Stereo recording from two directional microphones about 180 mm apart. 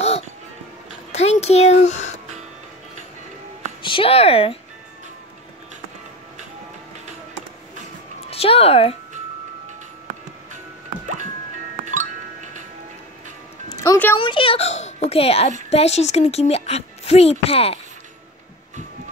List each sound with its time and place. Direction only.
1.1 s a child's voice: 35° left (ahead or behind)
3.8 s speech: 30° left (ahead or behind)
8.2 s speech: 35° left (ahead or behind)
11.8 s music: 45° right (ahead or behind)
13.7 s music: 20° left (ahead or behind)
14.1 s speech: 30° left (ahead or behind)